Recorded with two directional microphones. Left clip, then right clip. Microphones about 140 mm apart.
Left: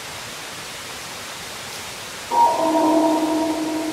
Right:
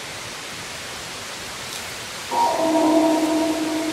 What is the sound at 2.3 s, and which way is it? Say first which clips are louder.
Music: left 3 dB; 35° left (ahead or behind).